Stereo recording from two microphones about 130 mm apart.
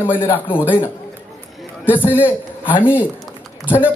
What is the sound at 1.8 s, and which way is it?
A man's voice, 15° left (ahead or behind).